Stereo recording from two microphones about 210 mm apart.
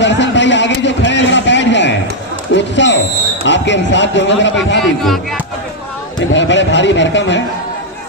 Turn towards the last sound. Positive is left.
turn(degrees=60)  # may be behind; listen again after turning